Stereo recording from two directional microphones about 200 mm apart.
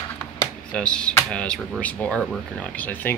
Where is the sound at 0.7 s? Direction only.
5° left (ahead or behind).